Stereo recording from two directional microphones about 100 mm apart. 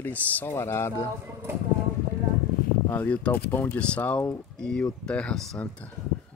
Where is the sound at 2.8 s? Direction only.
15° left (ahead or behind).